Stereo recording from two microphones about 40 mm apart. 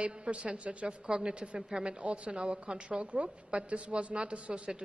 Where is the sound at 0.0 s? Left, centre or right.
Right.